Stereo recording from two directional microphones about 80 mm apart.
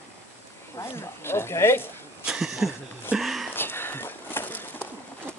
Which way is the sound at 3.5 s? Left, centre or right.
Left.